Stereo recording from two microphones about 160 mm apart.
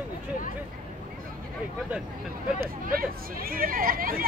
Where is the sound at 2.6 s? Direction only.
65° right (ahead or behind).